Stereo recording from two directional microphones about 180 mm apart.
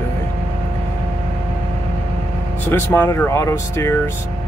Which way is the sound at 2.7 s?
15° left (ahead or behind).